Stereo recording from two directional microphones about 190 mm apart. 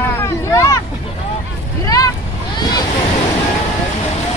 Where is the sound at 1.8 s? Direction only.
20° left (ahead or behind).